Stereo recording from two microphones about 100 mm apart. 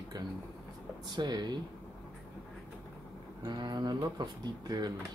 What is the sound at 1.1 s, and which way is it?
Speech, 45° right (ahead or behind).